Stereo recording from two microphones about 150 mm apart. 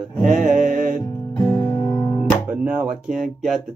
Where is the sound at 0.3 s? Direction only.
60° right (ahead or behind).